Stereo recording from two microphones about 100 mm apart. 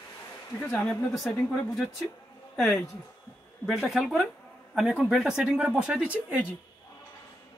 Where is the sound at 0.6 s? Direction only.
5° left (ahead or behind).